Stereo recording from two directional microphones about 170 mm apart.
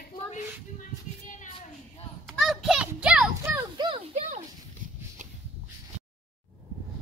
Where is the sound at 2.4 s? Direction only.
Centre (ahead or behind).